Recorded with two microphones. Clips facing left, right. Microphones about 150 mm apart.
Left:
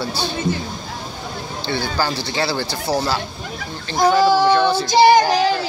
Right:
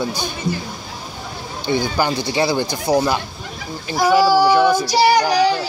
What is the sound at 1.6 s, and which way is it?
Speech, 15° right (ahead or behind).